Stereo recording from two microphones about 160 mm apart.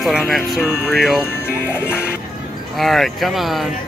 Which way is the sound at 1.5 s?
15° left (ahead or behind).